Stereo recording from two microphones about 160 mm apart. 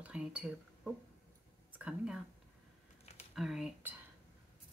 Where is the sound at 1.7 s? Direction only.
5° right (ahead or behind).